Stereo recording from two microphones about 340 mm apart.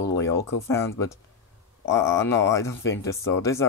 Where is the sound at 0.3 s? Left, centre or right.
Centre.